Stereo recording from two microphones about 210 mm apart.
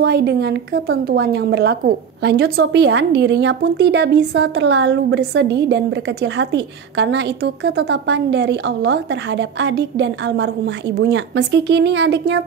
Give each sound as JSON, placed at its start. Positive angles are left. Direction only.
{"t": 0.0, "sound": "a woman's voice", "side_deg": -50}